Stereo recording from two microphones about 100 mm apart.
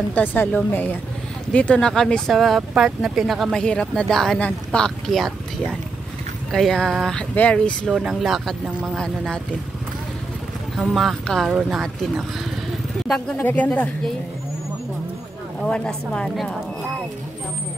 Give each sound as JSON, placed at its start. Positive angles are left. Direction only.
{"t": 0.1, "sound": "speech", "side_deg": 20}
{"t": 3.6, "sound": "speech", "side_deg": 10}
{"t": 7.9, "sound": "speech", "side_deg": -5}
{"t": 10.8, "sound": "speech", "side_deg": 0}
{"t": 13.4, "sound": "speech", "side_deg": 15}
{"t": 15.6, "sound": "speech", "side_deg": 10}